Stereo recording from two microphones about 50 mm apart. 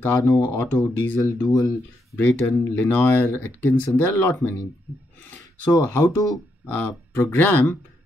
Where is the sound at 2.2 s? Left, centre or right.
Left.